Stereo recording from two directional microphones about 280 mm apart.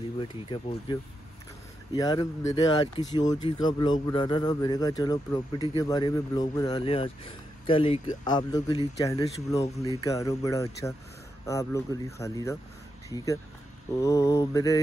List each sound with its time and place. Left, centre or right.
0.2 s speech: centre
2.0 s speech: centre